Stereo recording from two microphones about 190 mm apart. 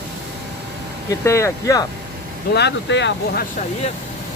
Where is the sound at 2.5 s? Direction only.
65° left (ahead or behind).